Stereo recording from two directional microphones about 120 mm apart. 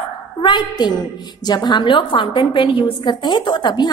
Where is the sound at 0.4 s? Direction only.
40° left (ahead or behind).